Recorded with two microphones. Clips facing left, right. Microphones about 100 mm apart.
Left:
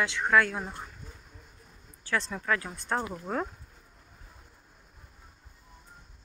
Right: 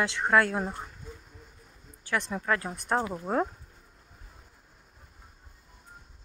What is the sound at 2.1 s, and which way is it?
Speech, 20° right (ahead or behind).